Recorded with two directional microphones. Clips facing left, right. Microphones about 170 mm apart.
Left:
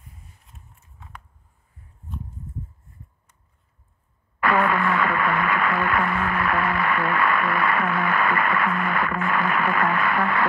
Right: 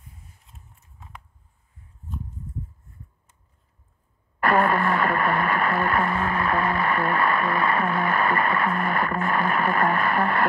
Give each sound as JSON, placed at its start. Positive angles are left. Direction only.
{"t": 4.4, "sound": "radio", "side_deg": -40}